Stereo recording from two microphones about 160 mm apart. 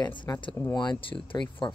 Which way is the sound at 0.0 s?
25° left (ahead or behind).